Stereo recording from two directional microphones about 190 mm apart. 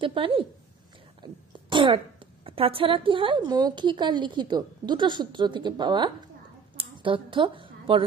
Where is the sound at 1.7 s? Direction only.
25° right (ahead or behind).